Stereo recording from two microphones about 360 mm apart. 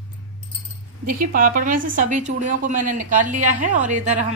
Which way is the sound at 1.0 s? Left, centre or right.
Right.